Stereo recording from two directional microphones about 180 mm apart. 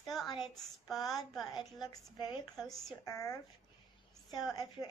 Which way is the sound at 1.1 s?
Centre (ahead or behind).